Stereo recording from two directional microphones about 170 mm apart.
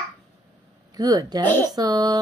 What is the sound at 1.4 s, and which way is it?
Speech, 15° left (ahead or behind).